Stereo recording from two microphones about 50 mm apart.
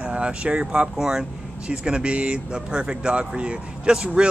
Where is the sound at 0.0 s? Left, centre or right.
Right.